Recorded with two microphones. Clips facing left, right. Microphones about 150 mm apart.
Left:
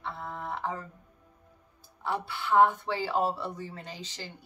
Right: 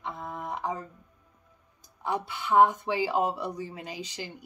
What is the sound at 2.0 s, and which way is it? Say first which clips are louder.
Speech: right 1 dB; 15° right (ahead or behind).